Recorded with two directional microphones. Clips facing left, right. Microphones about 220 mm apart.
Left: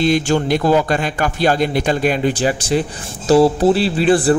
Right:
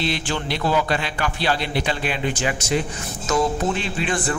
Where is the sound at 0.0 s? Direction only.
45° left (ahead or behind).